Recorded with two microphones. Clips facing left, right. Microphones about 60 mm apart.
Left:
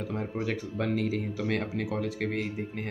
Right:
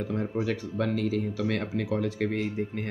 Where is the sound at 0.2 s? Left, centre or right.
Centre.